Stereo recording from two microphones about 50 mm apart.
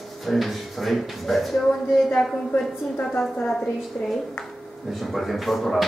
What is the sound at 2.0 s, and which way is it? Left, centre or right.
A woman's voice, left.